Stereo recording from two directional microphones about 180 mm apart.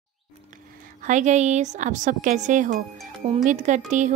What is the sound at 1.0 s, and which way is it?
Speech, 40° right (ahead or behind).